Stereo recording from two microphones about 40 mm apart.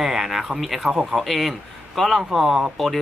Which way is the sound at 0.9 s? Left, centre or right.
Centre.